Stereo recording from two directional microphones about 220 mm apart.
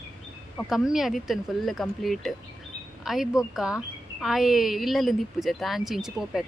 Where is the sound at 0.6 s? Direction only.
Centre (ahead or behind).